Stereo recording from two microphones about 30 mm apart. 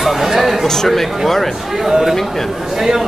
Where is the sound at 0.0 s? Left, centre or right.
Centre.